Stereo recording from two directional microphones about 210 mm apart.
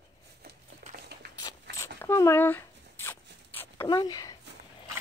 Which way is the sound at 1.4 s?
15° left (ahead or behind).